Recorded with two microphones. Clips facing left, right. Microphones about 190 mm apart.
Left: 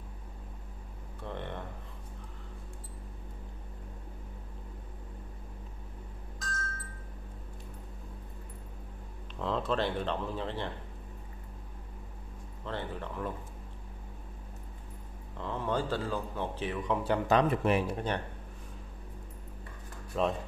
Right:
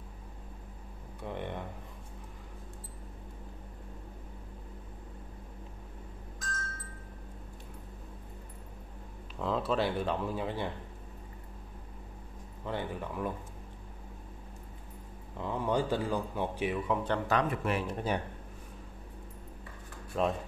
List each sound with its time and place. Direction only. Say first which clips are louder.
1.2 s a sound: right 1 dB; 15° right (ahead or behind)
9.4 s speech: right 1 dB; 5° right (ahead or behind)
12.6 s speech: right 2 dB; 10° right (ahead or behind)
15.3 s speech: right 2 dB; 15° right (ahead or behind)
17.3 s speech: left 6 dB; 25° left (ahead or behind)
17.8 s speech: even; centre (ahead or behind)
20.1 s speech: even; centre (ahead or behind)